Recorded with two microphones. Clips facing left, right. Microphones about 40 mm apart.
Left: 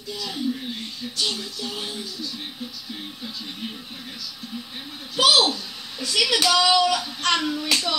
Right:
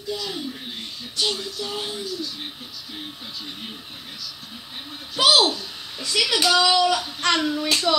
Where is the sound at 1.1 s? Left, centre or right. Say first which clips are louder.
Right 3 dB; right.